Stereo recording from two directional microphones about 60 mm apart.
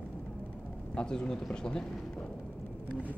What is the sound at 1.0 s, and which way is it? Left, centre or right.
Speech, centre.